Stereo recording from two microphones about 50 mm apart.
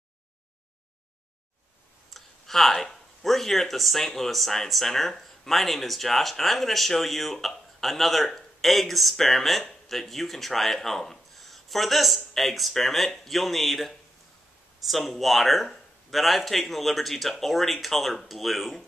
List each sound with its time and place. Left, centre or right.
2.1 s speech: centre